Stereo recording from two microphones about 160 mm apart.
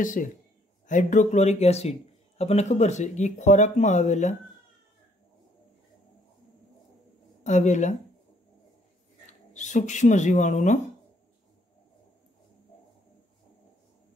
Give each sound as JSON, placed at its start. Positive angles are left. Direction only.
{"t": 0.0, "sound": "a man's voice", "side_deg": 55}
{"t": 7.4, "sound": "a man's voice", "side_deg": 45}
{"t": 9.5, "sound": "a man's voice", "side_deg": 50}